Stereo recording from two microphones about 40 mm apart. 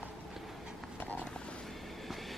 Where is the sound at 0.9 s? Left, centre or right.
Left.